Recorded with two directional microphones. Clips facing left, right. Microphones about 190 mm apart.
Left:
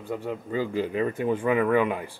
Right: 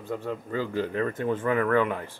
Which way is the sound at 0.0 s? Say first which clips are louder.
Left 1 dB; 10° left (ahead or behind).